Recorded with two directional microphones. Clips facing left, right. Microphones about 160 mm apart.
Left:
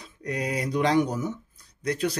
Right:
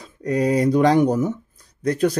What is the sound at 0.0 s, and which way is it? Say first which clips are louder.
Speech: right 10 dB; 45° right (ahead or behind).